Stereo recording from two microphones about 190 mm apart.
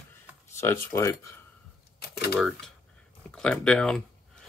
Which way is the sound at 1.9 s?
60° left (ahead or behind).